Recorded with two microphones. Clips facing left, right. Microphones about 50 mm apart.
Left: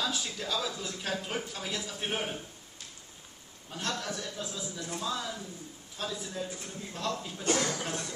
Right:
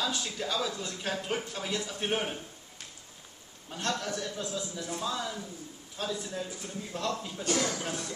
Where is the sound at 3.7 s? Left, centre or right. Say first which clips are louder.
Right 2 dB; centre.